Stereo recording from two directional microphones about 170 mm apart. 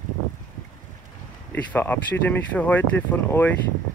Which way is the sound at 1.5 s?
10° left (ahead or behind).